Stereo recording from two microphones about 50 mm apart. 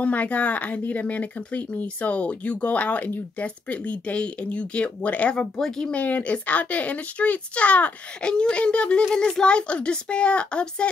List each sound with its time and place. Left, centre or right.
0.0 s speech: left
5.3 s speech: centre
5.9 s speech: left